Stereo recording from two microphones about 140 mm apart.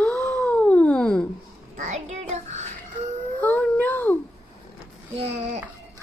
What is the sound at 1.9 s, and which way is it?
Child singing, 50° right (ahead or behind).